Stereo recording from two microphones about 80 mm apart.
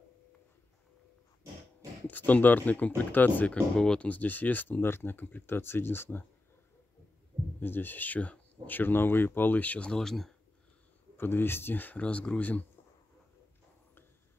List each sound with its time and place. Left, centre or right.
2.0 s speech: left
7.6 s speech: left; by 10.3 s centre
11.1 s speech: left